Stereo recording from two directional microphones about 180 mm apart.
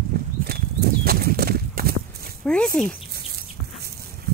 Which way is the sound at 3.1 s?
60° right (ahead or behind).